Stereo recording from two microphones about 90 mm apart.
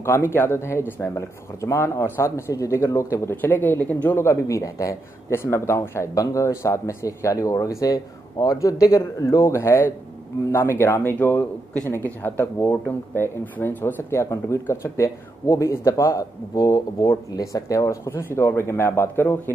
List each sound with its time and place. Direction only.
0.0 s speech: 25° left (ahead or behind)
4.2 s speech: 30° left (ahead or behind)